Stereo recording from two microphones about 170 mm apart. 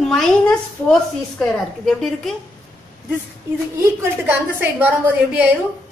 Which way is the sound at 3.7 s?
15° right (ahead or behind).